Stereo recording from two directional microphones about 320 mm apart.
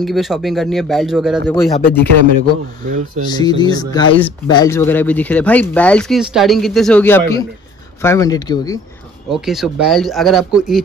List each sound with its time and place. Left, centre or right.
0.0 s speech: centre
2.8 s speech: right
3.3 s speech: centre
9.3 s speech: centre